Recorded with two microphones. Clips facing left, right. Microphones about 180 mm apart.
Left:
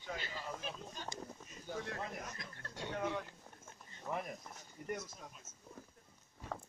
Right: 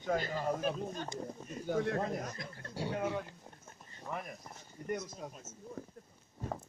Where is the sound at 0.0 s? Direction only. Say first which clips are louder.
Right 11 dB; 45° right (ahead or behind).